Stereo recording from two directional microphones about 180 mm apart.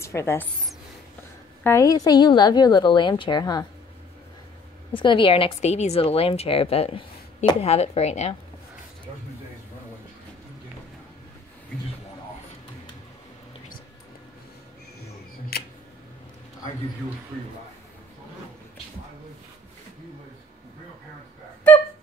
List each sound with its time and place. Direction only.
0.0 s a woman's voice: 15° left (ahead or behind)
1.6 s a woman's voice: 15° left (ahead or behind)
4.9 s a woman's voice: 30° left (ahead or behind)